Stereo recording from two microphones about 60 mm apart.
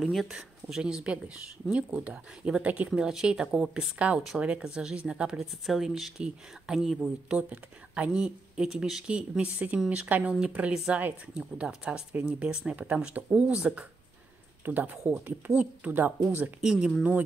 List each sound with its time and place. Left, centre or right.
0.0 s speech: centre; by 2.9 s right
3.0 s speech: centre
5.7 s speech: centre
7.2 s speech: right
9.4 s speech: right
14.6 s speech: right
16.6 s speech: centre